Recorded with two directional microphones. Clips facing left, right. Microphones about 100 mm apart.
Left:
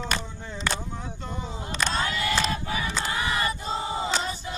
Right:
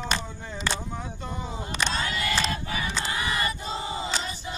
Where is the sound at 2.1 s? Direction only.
5° left (ahead or behind).